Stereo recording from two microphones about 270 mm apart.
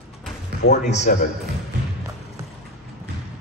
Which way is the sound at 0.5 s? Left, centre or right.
Right.